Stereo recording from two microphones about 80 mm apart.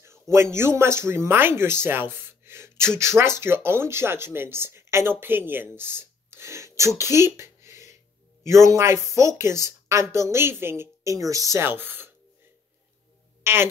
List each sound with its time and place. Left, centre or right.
0.0 s speech: right
7.0 s a sound: right
8.5 s a woman's voice: right
11.1 s speech: right
11.6 s speech: right
13.4 s music: right